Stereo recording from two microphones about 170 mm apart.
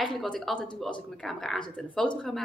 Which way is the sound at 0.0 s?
Centre (ahead or behind).